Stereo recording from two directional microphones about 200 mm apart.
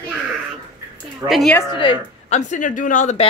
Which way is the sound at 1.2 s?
Centre (ahead or behind).